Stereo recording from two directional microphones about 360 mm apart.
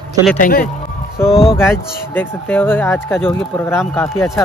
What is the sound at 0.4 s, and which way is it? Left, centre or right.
Speech, left.